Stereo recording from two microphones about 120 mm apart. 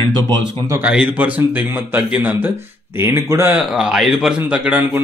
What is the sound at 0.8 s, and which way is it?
A man's voice, 10° right (ahead or behind).